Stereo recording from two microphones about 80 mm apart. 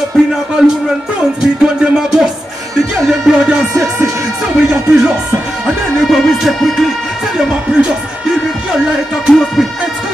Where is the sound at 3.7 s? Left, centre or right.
Right.